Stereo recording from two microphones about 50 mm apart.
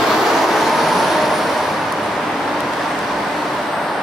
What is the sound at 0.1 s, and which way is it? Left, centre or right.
Vehicle, centre.